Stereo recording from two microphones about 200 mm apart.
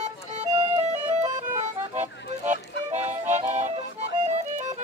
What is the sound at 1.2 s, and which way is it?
Music, 35° right (ahead or behind).